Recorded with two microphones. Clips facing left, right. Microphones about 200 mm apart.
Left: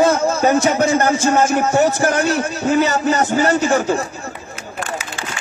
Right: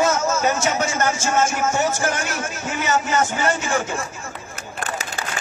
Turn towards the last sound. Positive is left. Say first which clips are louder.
# left 7 dB
turn(degrees=35)  # may be behind; listen again after turning